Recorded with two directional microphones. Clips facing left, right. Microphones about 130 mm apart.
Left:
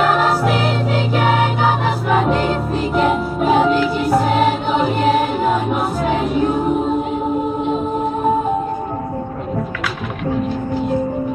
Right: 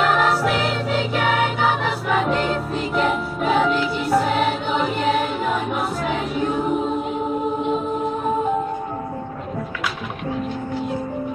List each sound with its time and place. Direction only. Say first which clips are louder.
0.1 s music: left 3 dB; 35° left (ahead or behind)
2.1 s music: left 3 dB; 40° left (ahead or behind)